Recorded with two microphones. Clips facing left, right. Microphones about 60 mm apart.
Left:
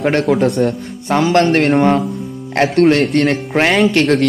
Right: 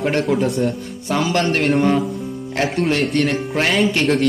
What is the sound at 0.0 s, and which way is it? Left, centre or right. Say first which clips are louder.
A man's voice: left 4 dB; left.